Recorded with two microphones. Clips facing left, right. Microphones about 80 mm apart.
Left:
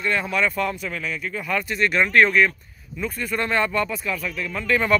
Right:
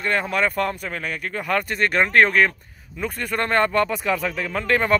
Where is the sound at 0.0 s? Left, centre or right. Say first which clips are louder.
Right 1 dB; right.